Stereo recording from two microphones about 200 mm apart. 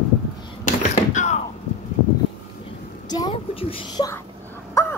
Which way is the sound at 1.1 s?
35° left (ahead or behind).